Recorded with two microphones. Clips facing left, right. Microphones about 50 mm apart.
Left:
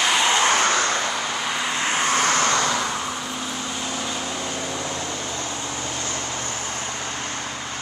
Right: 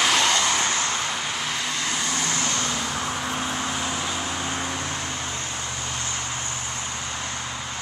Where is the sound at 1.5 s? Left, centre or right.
Centre.